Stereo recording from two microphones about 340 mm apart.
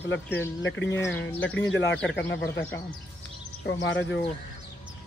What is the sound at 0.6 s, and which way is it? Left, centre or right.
Speech, left.